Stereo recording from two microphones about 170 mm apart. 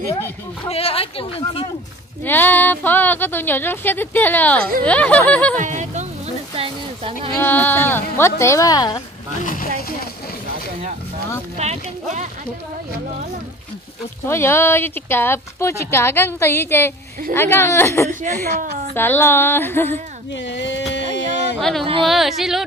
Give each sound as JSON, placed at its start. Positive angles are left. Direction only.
{"t": 0.7, "sound": "speech", "side_deg": 35}
{"t": 2.2, "sound": "a woman's voice", "side_deg": 10}
{"t": 5.6, "sound": "sheep", "side_deg": -45}
{"t": 7.3, "sound": "a woman's voice", "side_deg": 10}
{"t": 9.4, "sound": "speech", "side_deg": 50}
{"t": 11.5, "sound": "speech", "side_deg": -40}
{"t": 14.2, "sound": "a woman's voice", "side_deg": 15}
{"t": 18.5, "sound": "a woman's voice", "side_deg": -55}
{"t": 18.9, "sound": "a woman's voice", "side_deg": 10}
{"t": 20.4, "sound": "a sound", "side_deg": 90}
{"t": 21.5, "sound": "a woman's voice", "side_deg": 0}